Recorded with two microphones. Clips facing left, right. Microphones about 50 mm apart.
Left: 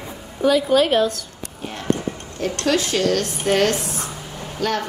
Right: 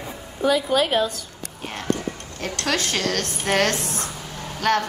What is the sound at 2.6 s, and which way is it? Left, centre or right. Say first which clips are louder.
A woman's voice: left 5 dB; right.